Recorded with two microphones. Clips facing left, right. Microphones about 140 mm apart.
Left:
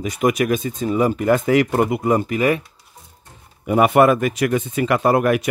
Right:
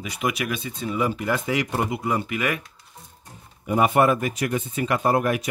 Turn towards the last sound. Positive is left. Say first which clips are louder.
# left 5 dB
turn(degrees=70)  # may be behind; listen again after turning